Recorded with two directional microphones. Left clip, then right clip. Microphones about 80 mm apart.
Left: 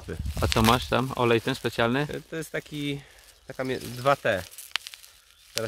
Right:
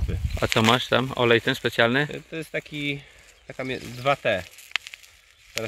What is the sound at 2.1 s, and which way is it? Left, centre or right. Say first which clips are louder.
Speech: right 2 dB; left.